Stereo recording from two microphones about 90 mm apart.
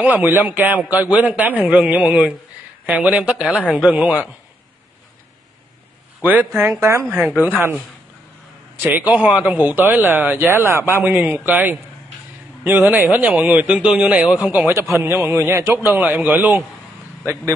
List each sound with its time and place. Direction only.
0.0 s speech: 20° right (ahead or behind)
6.2 s speech: 20° right (ahead or behind)
7.2 s speech: 20° right (ahead or behind)
9.1 s speech: 15° right (ahead or behind)
12.9 s speech: 20° right (ahead or behind)
14.7 s speech: 25° right (ahead or behind)